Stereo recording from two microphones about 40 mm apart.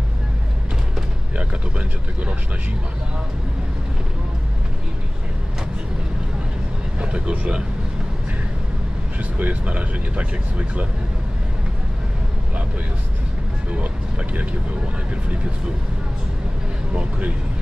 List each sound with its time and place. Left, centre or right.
1.3 s a sound: right
7.0 s speech: right
9.2 s speech: right